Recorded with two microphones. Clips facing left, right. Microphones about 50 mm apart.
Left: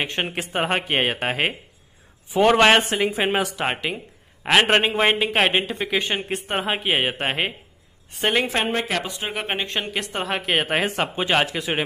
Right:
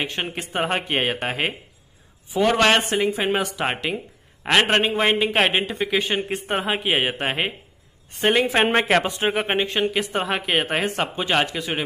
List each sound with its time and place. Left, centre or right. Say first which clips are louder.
0.1 s speech: left 2 dB; centre
2.5 s speech: left 1 dB; centre
3.5 s speech: right 1 dB; centre
4.6 s speech: left 1 dB; centre
8.8 s speech: right 7 dB; right
9.3 s speech: right 2 dB; centre